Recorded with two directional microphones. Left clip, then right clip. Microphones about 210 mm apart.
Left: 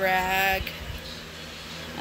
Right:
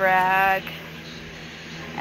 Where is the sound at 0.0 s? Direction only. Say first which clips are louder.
Right 5 dB; 30° left (ahead or behind).